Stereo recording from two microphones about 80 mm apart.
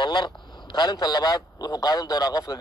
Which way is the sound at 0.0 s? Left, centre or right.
Left.